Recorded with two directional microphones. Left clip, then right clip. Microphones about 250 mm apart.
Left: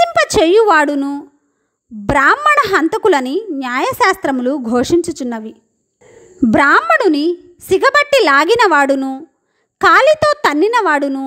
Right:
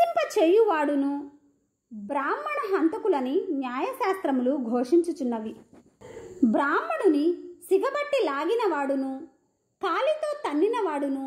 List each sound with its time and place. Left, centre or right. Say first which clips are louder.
0.0 s a sound: left 11 dB; left
0.3 s speech: left 12 dB; left
4.7 s a woman's voice: left 9 dB; left